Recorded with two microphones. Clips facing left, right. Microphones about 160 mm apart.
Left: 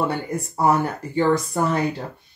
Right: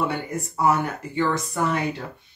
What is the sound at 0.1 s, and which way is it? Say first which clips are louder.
Speech: left 2 dB; 40° left (ahead or behind).